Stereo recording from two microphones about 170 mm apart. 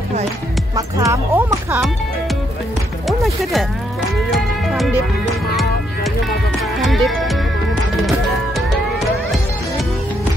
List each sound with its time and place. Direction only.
0.7 s speech: 20° right (ahead or behind)
3.1 s speech: centre (ahead or behind)
4.3 s music: centre (ahead or behind)
6.8 s music: centre (ahead or behind)